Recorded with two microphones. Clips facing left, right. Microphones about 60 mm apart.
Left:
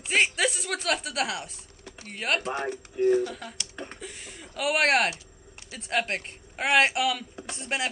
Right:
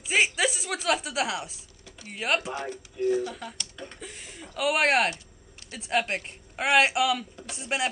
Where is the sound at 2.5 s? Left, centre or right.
Left.